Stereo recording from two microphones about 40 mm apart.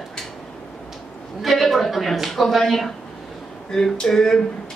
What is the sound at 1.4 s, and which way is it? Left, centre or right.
A man's voice, centre.